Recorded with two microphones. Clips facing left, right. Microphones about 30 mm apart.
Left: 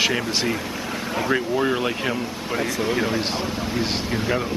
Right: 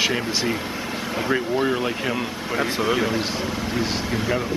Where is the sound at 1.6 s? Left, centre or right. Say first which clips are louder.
Even; centre.